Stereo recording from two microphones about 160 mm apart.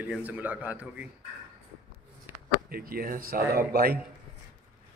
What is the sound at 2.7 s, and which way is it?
A man's voice, 65° right (ahead or behind).